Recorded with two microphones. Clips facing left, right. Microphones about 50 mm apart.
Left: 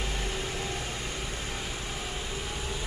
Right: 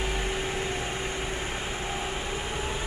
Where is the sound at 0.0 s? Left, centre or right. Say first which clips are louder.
Right 4 dB; right.